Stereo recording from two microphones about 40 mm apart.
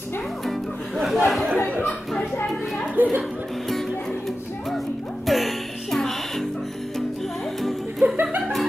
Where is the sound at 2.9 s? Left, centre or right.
Right.